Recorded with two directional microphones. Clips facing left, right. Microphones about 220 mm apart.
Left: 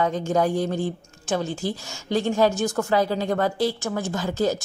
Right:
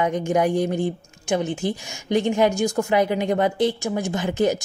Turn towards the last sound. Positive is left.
turn(degrees=-20)  # may be behind; listen again after turning